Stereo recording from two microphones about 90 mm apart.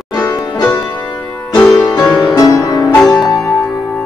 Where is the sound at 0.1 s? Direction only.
45° left (ahead or behind).